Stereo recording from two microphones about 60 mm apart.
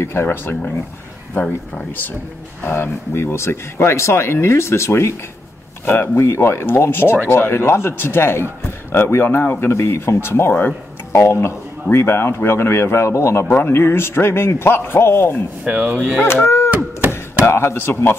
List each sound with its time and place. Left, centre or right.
0.0 s speech: left
1.4 s speech: left
2.6 s a man's voice: left
13.5 s a man's voice: left
15.6 s speech: centre
16.2 s honk: left
17.0 s a sound: right
17.5 s a man's voice: left